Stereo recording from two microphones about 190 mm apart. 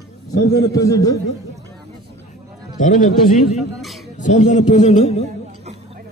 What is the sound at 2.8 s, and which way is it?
A man's voice, 40° left (ahead or behind).